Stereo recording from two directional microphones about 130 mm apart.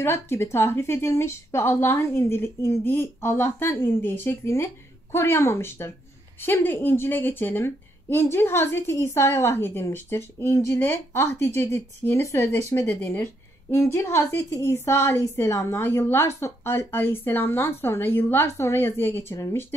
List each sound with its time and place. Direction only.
0.0 s a woman's voice: 20° left (ahead or behind)